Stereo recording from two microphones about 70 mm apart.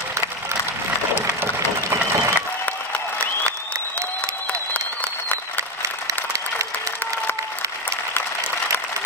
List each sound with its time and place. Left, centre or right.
1.4 s applause: right